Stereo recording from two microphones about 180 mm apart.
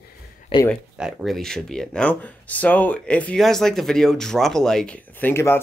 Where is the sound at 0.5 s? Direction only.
30° left (ahead or behind).